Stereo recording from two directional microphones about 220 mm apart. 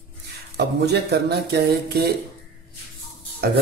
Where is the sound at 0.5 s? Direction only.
50° right (ahead or behind).